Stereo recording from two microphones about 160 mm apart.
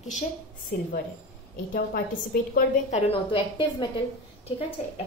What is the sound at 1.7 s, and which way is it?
Speech, 70° left (ahead or behind).